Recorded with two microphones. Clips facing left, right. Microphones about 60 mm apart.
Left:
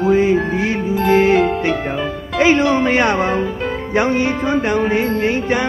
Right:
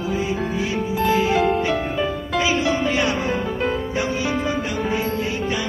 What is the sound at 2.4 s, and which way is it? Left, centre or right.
Music, left.